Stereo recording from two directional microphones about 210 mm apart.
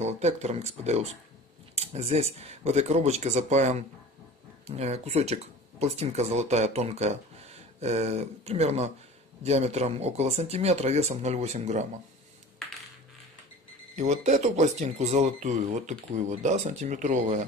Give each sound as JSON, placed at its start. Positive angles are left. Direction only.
{"t": 0.0, "sound": "speech", "side_deg": -30}
{"t": 13.9, "sound": "speech", "side_deg": -35}